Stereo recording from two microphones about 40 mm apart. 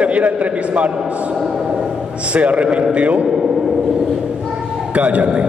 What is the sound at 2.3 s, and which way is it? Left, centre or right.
Speech, right.